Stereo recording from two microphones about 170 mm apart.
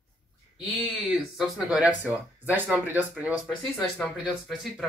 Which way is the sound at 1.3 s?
Centre (ahead or behind).